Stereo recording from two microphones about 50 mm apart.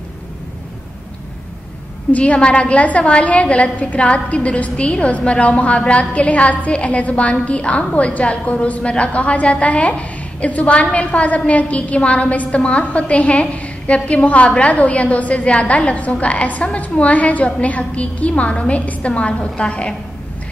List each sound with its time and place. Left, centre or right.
2.1 s a woman's voice: left